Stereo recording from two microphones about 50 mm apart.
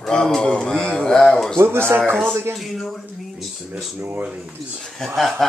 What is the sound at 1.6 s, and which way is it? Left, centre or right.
Speech, right.